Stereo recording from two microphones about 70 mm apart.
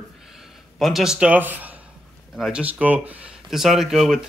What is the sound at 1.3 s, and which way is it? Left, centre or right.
Speech, right.